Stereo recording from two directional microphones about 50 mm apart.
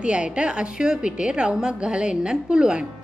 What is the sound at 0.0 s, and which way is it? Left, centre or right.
A woman's voice, right.